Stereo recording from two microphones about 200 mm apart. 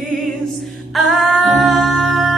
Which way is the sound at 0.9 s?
Centre (ahead or behind).